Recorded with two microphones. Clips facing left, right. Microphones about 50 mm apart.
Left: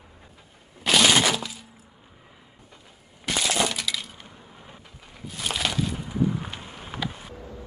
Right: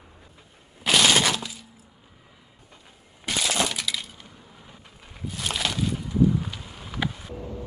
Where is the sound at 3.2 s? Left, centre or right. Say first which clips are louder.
Left 1 dB; centre.